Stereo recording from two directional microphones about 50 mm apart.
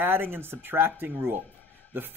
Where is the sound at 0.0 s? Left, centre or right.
Right.